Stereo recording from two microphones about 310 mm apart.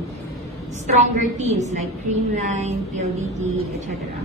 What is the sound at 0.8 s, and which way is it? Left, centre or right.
A woman's voice, right.